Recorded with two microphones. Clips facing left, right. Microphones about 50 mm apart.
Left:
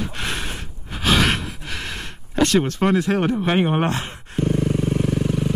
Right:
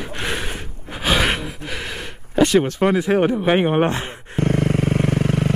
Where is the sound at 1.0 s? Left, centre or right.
Centre.